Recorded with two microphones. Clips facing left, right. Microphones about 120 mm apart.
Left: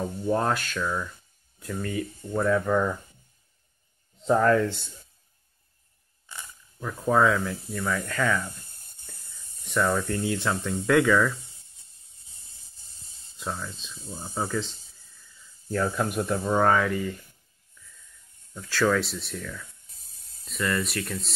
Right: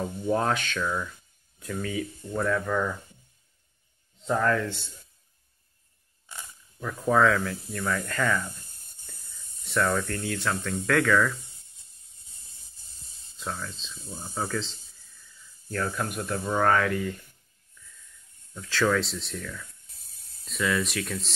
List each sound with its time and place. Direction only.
0.3 s speech: centre (ahead or behind)
2.6 s speech: 15° left (ahead or behind)
4.3 s speech: 20° left (ahead or behind)
6.8 s speech: 10° left (ahead or behind)
9.7 s speech: 5° left (ahead or behind)
13.4 s speech: 10° left (ahead or behind)
18.5 s speech: 5° left (ahead or behind)